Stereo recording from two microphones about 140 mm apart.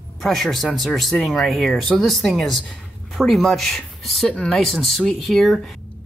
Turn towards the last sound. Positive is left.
turn(degrees=0)  # may be behind; listen again after turning